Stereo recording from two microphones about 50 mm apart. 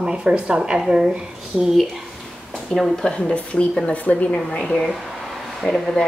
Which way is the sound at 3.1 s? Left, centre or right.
Left.